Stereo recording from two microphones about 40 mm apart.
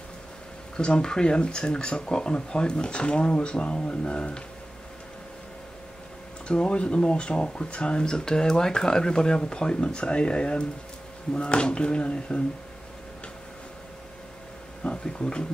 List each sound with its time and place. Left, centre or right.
0.7 s speech: left
6.4 s speech: left
14.8 s a sound: left